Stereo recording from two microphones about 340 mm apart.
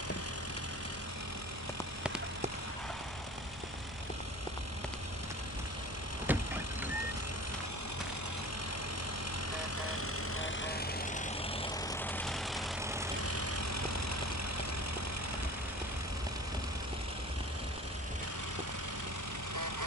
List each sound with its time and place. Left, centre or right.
6.3 s vehicle: centre
9.5 s vehicle: left
10.7 s vehicle: left
11.9 s vehicle: centre
13.2 s vehicle: right